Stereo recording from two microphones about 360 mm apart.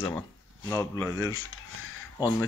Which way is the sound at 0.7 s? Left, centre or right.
Centre.